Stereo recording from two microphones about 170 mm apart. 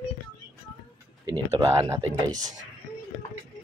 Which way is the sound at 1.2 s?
20° right (ahead or behind).